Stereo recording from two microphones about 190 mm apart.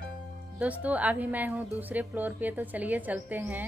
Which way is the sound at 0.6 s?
10° right (ahead or behind).